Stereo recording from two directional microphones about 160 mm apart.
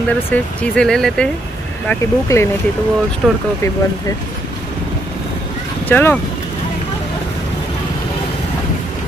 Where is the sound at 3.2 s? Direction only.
5° right (ahead or behind).